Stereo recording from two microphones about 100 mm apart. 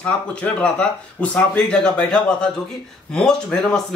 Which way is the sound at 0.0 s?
10° left (ahead or behind).